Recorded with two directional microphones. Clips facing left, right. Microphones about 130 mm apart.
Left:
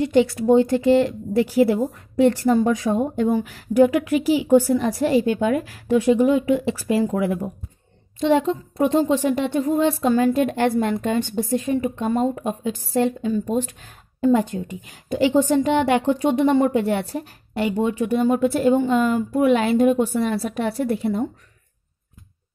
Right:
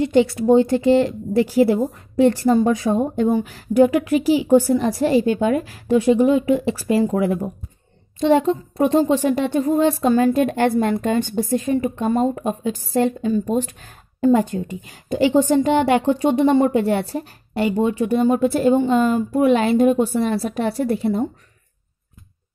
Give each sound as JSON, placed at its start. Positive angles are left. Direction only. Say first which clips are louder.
{"t": 0.0, "sound": "speech", "louder": "right 1 dB", "side_deg": -30}